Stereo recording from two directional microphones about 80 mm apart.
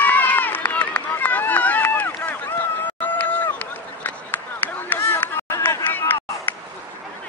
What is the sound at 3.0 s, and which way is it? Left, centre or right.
Run, left.